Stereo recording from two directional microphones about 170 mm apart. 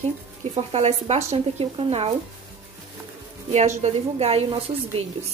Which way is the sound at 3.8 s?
40° right (ahead or behind).